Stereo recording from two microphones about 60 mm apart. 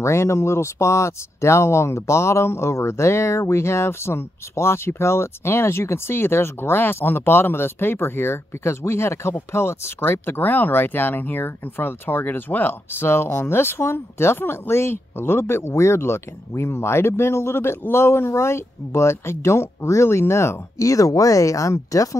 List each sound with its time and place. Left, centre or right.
0.0 s speech: left
20.7 s speech: left